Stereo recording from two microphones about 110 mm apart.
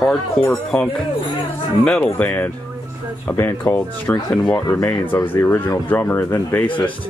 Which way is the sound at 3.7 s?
15° left (ahead or behind).